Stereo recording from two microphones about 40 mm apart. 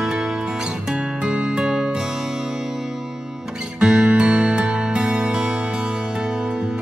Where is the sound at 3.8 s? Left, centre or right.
Right.